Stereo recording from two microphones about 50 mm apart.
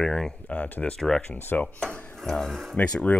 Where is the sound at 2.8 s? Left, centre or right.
Left.